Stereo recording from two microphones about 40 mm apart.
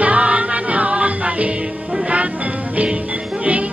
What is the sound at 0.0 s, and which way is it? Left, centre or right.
Music, right.